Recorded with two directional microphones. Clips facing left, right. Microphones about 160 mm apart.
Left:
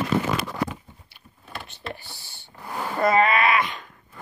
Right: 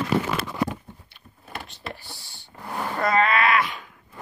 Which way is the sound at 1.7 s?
Centre (ahead or behind).